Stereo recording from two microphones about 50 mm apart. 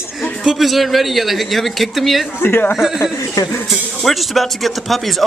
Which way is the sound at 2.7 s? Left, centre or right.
Centre.